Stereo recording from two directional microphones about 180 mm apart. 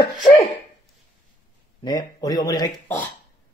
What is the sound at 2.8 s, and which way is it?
Speech, 10° left (ahead or behind).